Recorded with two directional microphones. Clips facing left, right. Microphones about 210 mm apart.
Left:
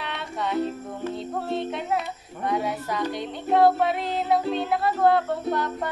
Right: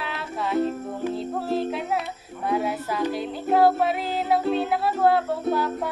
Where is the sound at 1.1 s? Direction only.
5° right (ahead or behind).